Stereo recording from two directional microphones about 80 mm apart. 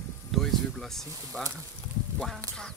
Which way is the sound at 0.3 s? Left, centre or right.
Centre.